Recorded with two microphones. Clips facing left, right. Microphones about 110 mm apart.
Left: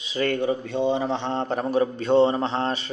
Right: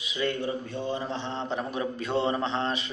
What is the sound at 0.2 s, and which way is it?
A man's voice, 60° left (ahead or behind).